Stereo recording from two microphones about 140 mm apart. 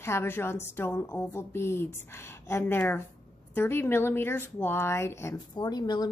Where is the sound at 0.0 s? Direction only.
15° left (ahead or behind).